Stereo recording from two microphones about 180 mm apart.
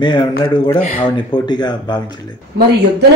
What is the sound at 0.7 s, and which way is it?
Speech, 45° left (ahead or behind).